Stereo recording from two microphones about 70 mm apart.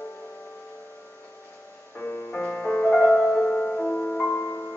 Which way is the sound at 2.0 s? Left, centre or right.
Left.